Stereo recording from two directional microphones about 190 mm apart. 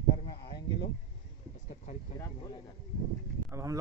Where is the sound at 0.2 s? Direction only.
30° left (ahead or behind).